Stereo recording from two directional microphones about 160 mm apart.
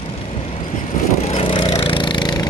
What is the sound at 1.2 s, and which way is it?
Wood, 35° left (ahead or behind).